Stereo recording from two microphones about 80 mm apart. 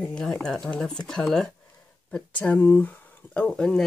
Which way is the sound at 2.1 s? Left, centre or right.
Centre.